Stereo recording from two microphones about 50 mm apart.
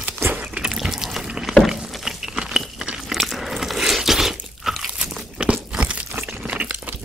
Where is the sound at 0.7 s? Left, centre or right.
Centre.